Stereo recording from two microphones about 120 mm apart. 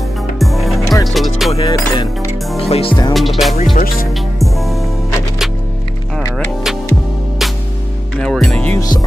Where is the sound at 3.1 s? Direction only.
Centre (ahead or behind).